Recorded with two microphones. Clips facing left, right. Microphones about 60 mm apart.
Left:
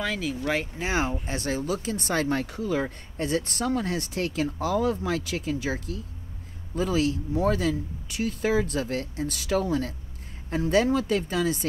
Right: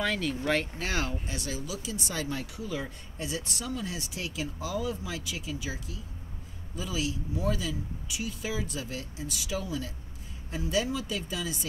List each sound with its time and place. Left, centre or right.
0.0 s speech: centre
0.7 s speech: left